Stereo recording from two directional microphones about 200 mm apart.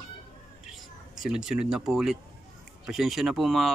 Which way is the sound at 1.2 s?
5° right (ahead or behind).